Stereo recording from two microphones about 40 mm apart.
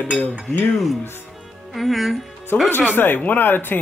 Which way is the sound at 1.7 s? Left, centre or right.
Centre.